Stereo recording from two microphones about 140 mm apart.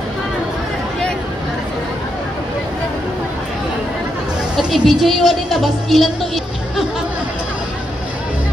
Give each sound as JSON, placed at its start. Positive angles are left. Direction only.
{"t": 4.6, "sound": "a woman's voice", "side_deg": -5}